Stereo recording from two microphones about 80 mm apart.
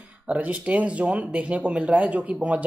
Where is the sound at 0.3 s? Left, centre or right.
Centre.